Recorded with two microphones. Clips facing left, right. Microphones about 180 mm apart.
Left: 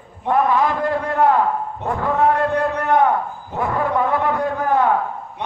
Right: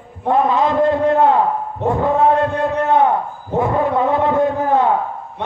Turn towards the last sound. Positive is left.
turn(degrees=-20)  # may be behind; listen again after turning